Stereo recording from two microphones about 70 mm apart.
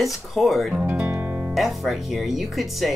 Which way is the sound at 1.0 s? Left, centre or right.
Right.